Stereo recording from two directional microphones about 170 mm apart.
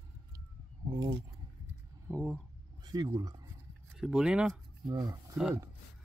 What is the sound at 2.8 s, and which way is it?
Speech, 25° right (ahead or behind).